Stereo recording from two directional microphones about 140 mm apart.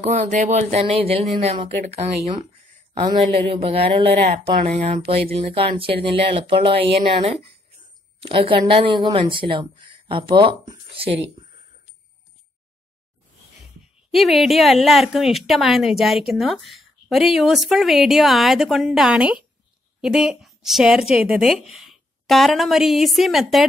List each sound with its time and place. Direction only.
0.0 s speech: 60° right (ahead or behind); by 11.4 s 40° right (ahead or behind)
14.1 s a woman's voice: centre (ahead or behind)